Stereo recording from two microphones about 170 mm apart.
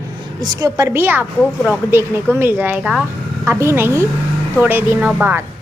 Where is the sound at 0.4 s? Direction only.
20° right (ahead or behind).